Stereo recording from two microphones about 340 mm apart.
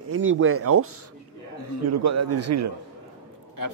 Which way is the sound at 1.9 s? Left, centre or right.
Right.